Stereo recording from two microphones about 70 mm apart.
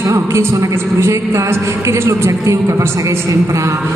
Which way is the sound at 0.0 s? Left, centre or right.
Right.